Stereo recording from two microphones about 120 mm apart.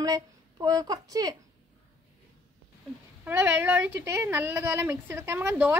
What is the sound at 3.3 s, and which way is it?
A woman's voice, 20° right (ahead or behind).